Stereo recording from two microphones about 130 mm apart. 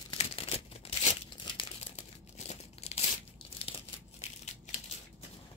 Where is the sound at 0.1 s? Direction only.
45° left (ahead or behind).